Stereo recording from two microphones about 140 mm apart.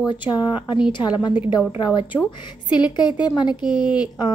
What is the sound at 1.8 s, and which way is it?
A woman's voice, 30° left (ahead or behind).